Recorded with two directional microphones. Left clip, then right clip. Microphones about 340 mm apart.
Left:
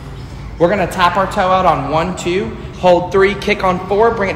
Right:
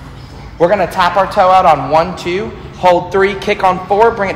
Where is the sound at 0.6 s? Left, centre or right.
Right.